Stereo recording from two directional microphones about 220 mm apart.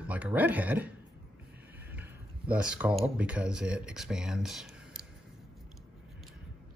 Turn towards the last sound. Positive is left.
turn(degrees=0)  # may be behind; listen again after turning